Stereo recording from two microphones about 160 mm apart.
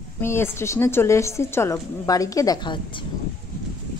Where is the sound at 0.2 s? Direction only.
15° left (ahead or behind); by 3.1 s 30° left (ahead or behind).